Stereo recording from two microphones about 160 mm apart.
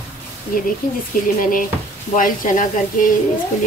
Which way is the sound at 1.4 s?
60° left (ahead or behind).